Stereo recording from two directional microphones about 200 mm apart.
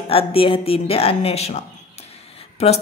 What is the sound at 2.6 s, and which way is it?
Speech, 35° left (ahead or behind).